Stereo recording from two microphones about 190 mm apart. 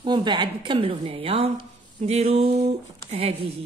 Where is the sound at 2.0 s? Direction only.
35° right (ahead or behind).